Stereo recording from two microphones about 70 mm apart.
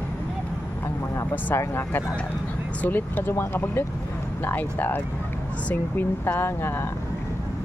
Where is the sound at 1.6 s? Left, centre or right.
Left.